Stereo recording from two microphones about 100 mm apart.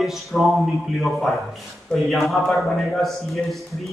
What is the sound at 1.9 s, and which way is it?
A man's voice, centre (ahead or behind).